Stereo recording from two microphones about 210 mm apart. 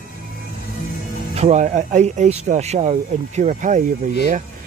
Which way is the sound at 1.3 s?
30° right (ahead or behind).